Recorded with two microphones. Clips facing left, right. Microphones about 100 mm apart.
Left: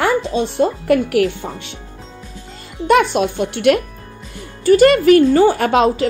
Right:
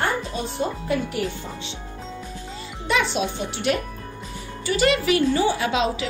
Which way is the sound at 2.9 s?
55° left (ahead or behind).